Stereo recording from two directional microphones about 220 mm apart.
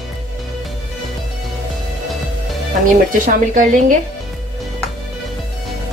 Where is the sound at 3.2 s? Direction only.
35° right (ahead or behind).